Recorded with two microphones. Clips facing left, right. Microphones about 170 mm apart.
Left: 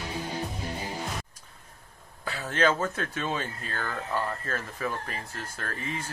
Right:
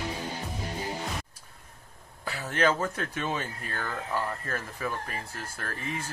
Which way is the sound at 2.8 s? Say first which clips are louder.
Left 1 dB; 15° right (ahead or behind).